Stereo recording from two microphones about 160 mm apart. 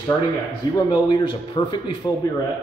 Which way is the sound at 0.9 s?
30° left (ahead or behind).